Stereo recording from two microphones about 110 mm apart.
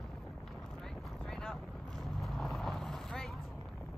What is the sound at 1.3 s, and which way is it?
Vehicle, 5° left (ahead or behind).